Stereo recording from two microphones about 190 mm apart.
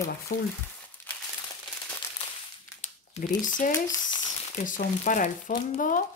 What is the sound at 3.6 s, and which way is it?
Speech, 45° left (ahead or behind).